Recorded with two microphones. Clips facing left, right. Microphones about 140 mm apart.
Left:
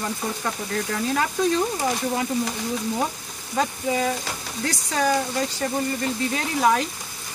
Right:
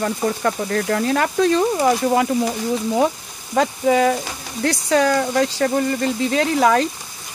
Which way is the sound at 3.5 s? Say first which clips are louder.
Right 7 dB; 85° right.